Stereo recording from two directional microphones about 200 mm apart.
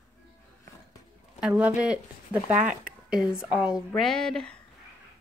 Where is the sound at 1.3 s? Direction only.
5° right (ahead or behind).